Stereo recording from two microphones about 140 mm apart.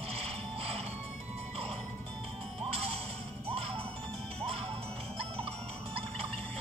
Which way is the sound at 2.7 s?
45° right (ahead or behind).